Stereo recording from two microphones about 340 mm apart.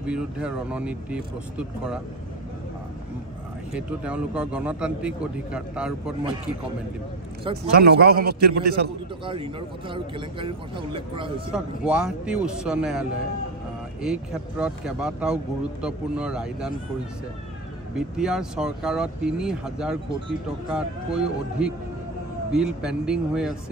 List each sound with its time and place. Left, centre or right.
0.0 s speech: centre
3.7 s speech: centre
7.7 s a man's voice: right
9.2 s speech: centre
11.5 s speech: centre
14.0 s speech: centre
17.9 s speech: centre